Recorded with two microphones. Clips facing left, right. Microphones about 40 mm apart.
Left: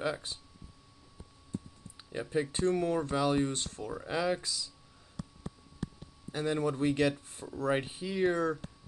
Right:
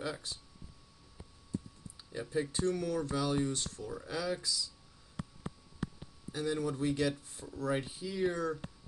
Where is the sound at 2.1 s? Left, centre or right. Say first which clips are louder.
Left 3 dB; left.